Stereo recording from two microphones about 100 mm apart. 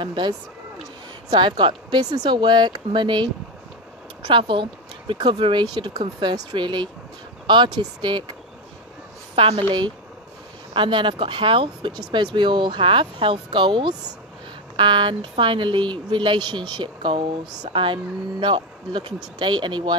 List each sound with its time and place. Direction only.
0.0 s speech: 50° right (ahead or behind)
4.3 s speech: 55° right (ahead or behind)
9.3 s speech: 65° right (ahead or behind)